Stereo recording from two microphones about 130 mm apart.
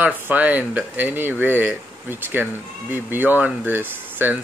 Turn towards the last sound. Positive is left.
turn(degrees=-15)  # may be behind; listen again after turning